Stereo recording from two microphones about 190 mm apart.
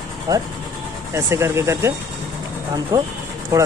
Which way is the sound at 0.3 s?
20° right (ahead or behind).